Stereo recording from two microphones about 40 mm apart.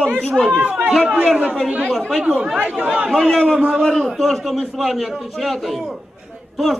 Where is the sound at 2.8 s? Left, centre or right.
Right.